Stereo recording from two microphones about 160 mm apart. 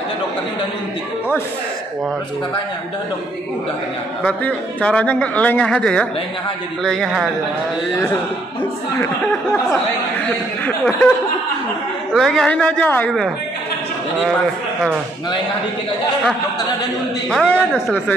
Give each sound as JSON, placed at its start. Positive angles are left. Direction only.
{"t": 4.2, "sound": "speech", "side_deg": 5}
{"t": 9.0, "sound": "speech", "side_deg": 15}
{"t": 12.1, "sound": "speech", "side_deg": 0}
{"t": 17.3, "sound": "speech", "side_deg": 5}